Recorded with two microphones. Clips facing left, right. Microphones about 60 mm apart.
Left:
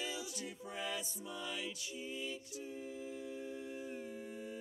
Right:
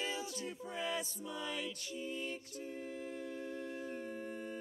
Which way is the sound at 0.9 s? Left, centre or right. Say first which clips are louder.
Right 3 dB; right.